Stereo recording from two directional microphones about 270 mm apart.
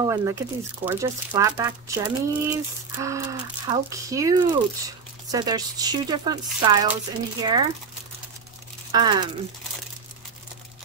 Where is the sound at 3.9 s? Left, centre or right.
Centre.